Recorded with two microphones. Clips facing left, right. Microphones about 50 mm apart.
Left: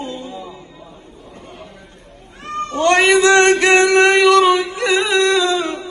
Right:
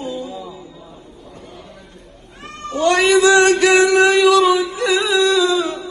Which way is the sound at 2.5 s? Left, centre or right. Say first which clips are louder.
Left 2 dB; left.